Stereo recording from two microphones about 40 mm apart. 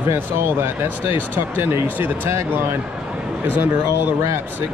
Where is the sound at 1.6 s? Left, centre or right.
Right.